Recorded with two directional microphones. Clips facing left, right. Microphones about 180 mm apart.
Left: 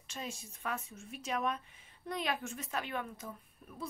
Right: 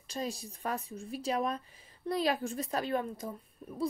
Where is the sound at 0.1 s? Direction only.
35° right (ahead or behind).